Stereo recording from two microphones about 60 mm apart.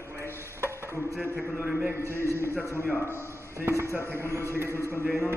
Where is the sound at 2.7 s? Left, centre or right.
Left.